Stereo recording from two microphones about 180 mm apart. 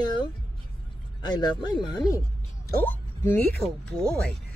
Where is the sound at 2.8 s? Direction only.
10° left (ahead or behind).